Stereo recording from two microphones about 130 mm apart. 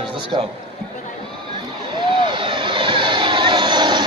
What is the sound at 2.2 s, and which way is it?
Vehicle, 35° right (ahead or behind).